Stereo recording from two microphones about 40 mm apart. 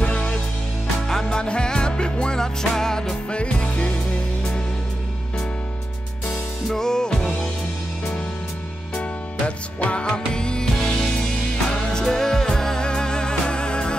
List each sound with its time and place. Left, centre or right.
0.0 s music: left
1.0 s music: centre
3.3 s music: left
6.2 s music: centre
9.8 s music: left
10.0 s music: left